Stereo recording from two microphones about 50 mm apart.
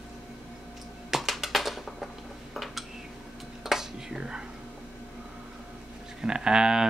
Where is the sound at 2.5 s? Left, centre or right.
Centre.